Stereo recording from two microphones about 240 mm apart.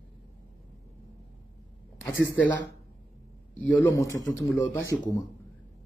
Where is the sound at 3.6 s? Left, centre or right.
Centre.